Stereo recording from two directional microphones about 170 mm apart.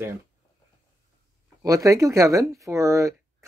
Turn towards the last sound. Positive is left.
turn(degrees=-20)  # may be behind; listen again after turning